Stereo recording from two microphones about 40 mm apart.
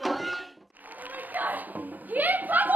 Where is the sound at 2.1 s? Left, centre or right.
Right.